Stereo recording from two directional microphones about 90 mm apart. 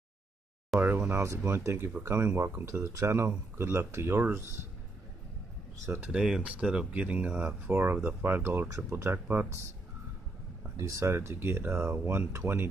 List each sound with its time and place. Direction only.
0.7 s speech: 25° right (ahead or behind)
5.9 s speech: 25° right (ahead or behind)
6.1 s speech: 10° right (ahead or behind)
10.8 s speech: 35° right (ahead or behind)